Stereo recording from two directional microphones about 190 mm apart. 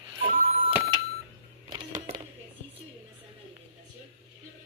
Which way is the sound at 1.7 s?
25° right (ahead or behind).